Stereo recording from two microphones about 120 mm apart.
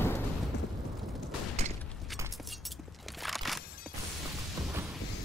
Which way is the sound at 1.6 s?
65° right (ahead or behind).